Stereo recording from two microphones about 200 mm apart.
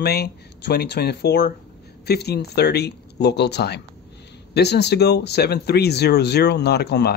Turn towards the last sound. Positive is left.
turn(degrees=55)  # may be behind; listen again after turning